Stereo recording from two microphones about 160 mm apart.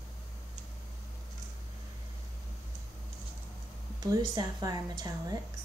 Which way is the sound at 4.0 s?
25° right (ahead or behind).